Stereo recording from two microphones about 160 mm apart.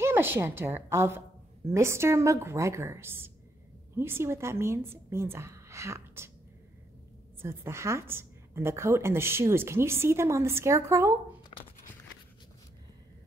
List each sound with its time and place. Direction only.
0.0 s a woman's voice: 15° right (ahead or behind)
7.4 s a woman's voice: 15° right (ahead or behind)
11.5 s a sound: 35° left (ahead or behind)